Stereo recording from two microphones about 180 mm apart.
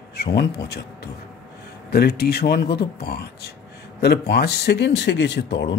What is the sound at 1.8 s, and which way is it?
A man's voice, 60° left (ahead or behind).